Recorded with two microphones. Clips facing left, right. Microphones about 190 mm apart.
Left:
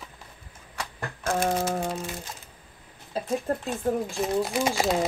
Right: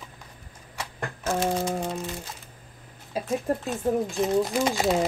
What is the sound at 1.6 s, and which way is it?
Music, 10° left (ahead or behind).